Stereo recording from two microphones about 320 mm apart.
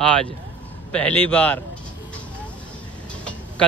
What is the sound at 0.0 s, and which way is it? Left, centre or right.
Speech, centre.